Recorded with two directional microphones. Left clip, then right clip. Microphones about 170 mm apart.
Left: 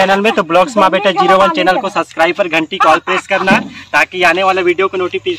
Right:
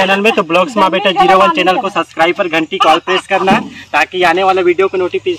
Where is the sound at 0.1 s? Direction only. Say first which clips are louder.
Even; 5° left (ahead or behind).